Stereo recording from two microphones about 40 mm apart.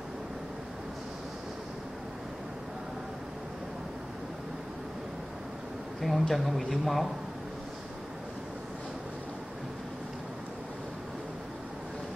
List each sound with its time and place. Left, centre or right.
5.9 s a man's voice: centre